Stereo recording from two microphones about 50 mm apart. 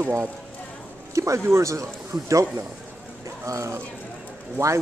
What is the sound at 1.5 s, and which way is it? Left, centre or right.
Speech, right.